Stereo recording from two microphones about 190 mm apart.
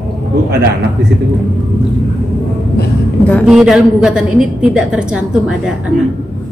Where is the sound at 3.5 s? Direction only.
5° right (ahead or behind).